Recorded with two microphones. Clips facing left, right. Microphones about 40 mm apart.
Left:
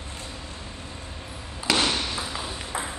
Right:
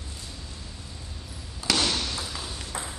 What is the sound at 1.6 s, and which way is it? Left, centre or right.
Ping, left.